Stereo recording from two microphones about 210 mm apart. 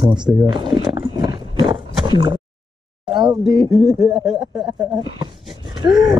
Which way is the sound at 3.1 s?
20° right (ahead or behind).